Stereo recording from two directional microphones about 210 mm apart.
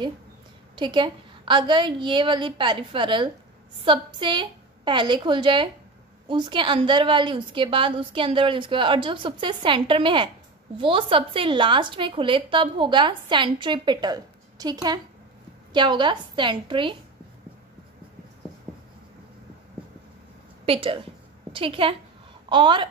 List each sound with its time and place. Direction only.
0.7 s a woman's voice: 20° right (ahead or behind)
20.6 s a woman's voice: 25° right (ahead or behind)